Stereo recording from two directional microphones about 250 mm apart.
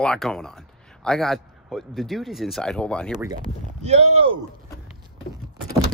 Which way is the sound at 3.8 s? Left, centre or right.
Right.